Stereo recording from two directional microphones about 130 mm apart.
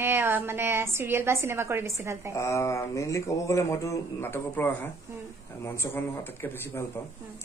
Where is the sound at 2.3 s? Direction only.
20° left (ahead or behind).